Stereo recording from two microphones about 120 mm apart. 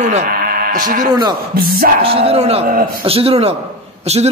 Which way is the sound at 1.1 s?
35° right (ahead or behind).